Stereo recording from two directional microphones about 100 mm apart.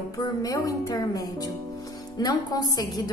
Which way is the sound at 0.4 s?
35° left (ahead or behind).